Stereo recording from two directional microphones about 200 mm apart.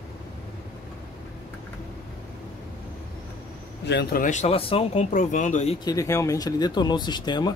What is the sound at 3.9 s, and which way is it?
Speech, 60° left (ahead or behind).